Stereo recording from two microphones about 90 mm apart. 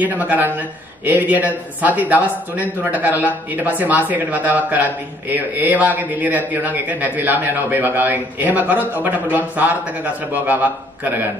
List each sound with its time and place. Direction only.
0.0 s a man's voice: 20° right (ahead or behind)